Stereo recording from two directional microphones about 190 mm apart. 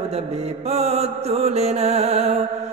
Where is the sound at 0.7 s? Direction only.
35° right (ahead or behind).